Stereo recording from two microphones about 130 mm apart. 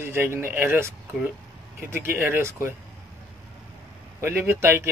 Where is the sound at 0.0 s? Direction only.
20° right (ahead or behind).